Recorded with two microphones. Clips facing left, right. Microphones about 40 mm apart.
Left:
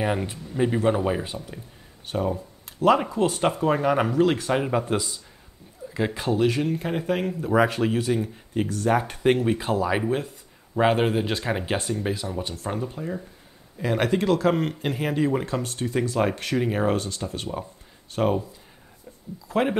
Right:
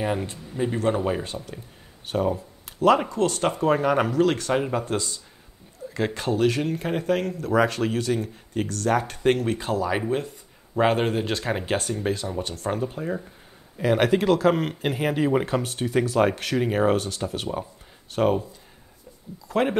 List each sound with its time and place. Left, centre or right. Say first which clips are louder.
0.0 s speech: left 1 dB; centre
15.3 s speech: right 3 dB; centre
15.6 s speech: right 2 dB; centre
19.4 s speech: even; centre